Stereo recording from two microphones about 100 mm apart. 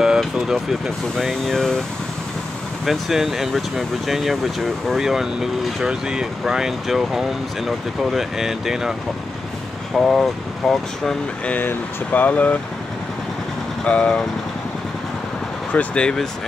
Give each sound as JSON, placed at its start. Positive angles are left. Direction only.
{"t": 0.0, "sound": "speech", "side_deg": -5}
{"t": 2.8, "sound": "speech", "side_deg": 0}
{"t": 9.9, "sound": "speech", "side_deg": 5}
{"t": 11.5, "sound": "speech", "side_deg": 20}
{"t": 13.8, "sound": "speech", "side_deg": 10}
{"t": 15.7, "sound": "speech", "side_deg": 15}